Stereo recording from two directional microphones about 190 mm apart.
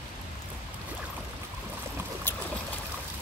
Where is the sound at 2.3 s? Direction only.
10° left (ahead or behind).